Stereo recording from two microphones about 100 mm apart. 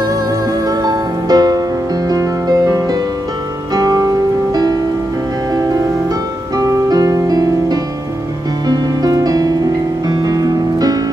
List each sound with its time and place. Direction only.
0.7 s music: 40° right (ahead or behind)
6.5 s music: 40° right (ahead or behind)